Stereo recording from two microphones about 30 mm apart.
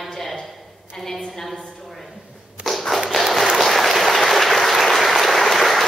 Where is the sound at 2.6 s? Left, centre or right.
Right.